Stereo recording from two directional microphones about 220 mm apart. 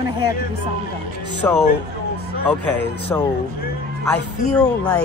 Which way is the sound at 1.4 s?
10° left (ahead or behind).